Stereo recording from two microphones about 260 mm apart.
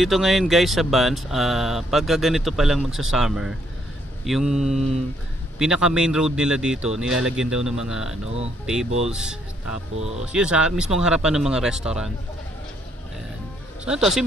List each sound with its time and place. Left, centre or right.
0.0 s speech: centre
9.9 s speech: right
10.2 s speech: centre
13.8 s speech: centre